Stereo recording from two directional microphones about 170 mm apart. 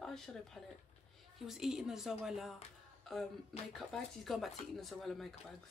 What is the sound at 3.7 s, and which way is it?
Speech, centre (ahead or behind).